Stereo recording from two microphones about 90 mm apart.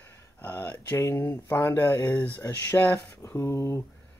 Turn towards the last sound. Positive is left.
turn(degrees=30)  # may be behind; listen again after turning